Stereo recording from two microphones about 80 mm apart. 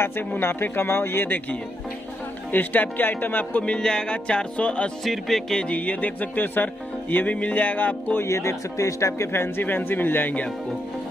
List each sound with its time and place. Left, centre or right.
0.0 s music: left
2.5 s speech: left
5.0 s music: centre; by 10.5 s left